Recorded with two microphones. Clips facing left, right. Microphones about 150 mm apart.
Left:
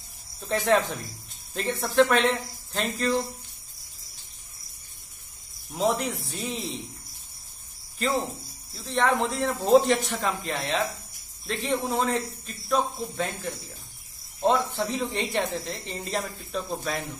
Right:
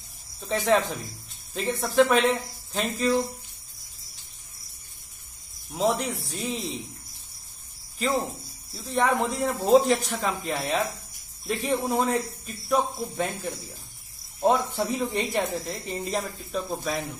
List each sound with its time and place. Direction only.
0.4 s a man's voice: centre (ahead or behind)
5.8 s a man's voice: centre (ahead or behind)
8.0 s a man's voice: centre (ahead or behind)